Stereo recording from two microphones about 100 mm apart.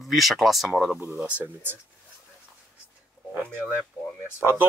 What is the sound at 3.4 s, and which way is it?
Speech, 10° left (ahead or behind).